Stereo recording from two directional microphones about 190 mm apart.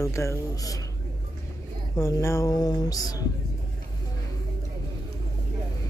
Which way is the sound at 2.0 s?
15° left (ahead or behind).